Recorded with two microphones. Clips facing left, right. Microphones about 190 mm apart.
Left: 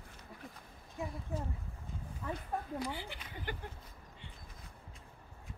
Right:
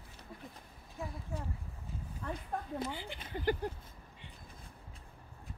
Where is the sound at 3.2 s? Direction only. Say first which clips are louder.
Right 9 dB; 35° right (ahead or behind).